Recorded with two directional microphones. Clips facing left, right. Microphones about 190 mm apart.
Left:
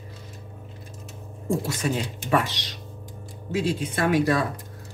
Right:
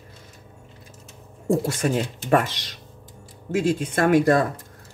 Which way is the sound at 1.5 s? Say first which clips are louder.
Right 4 dB; 50° right (ahead or behind).